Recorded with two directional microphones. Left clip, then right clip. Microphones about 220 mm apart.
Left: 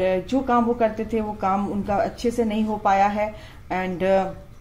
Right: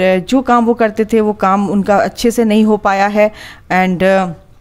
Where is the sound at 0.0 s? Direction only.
50° right (ahead or behind).